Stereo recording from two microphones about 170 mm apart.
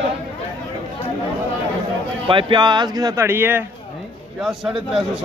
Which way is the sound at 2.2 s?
30° right (ahead or behind).